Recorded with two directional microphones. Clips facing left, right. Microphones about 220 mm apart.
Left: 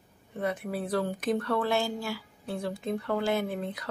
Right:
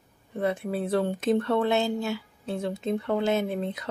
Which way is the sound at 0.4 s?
30° right (ahead or behind).